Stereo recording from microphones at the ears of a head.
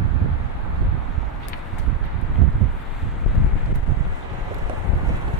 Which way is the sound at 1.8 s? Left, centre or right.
Right.